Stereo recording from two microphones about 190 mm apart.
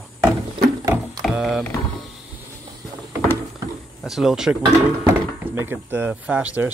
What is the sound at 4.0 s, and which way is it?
Speech, centre (ahead or behind).